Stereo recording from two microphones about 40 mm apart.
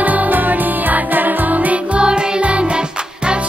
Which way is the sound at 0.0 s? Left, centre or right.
Right.